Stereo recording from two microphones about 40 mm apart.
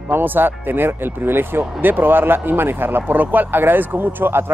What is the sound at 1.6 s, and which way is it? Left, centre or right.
Speech, right.